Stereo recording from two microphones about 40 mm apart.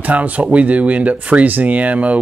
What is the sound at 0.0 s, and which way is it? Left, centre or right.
Speech, right.